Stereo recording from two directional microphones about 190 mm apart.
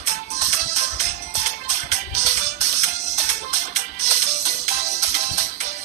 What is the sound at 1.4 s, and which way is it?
Music, 35° right (ahead or behind).